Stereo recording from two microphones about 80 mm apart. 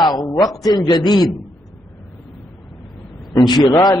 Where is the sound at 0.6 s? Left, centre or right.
Left.